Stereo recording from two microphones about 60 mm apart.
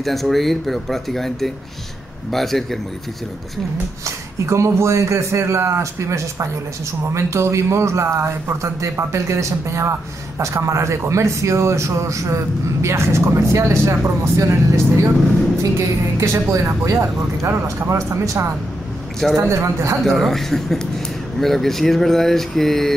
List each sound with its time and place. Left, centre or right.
0.0 s speech: centre
4.0 s speech: right
16.2 s a man's voice: right
16.6 s a man's voice: right
20.0 s speech: centre